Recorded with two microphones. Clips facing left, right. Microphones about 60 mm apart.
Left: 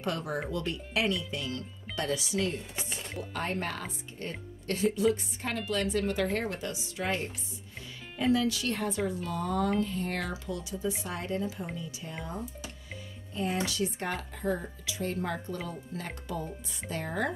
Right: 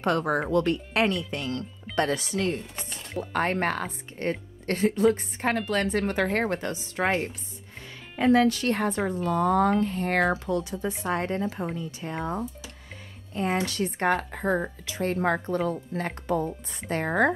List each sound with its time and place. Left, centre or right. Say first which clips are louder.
0.0 s speech: right 8 dB; right